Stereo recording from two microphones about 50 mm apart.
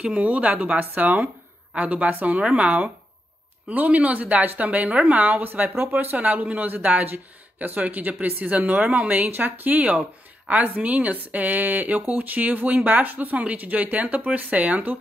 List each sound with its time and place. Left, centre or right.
0.0 s speech: right
2.3 s speech: right
6.1 s speech: right